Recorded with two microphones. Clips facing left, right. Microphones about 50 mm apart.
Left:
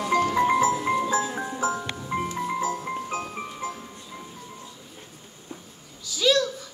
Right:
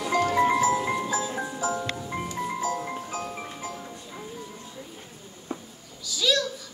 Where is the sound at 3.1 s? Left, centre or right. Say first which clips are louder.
Left 2 dB; left.